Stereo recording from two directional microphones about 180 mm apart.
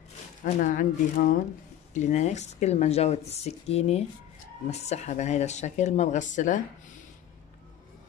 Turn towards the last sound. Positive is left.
turn(degrees=45)  # may be behind; listen again after turning